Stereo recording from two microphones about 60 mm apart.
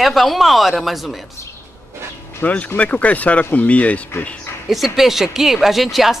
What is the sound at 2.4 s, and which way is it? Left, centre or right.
Speech, left.